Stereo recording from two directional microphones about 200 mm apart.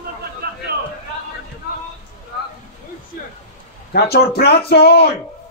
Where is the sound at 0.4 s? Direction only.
55° right (ahead or behind).